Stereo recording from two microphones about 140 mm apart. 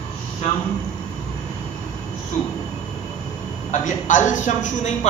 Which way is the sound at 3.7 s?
60° left (ahead or behind).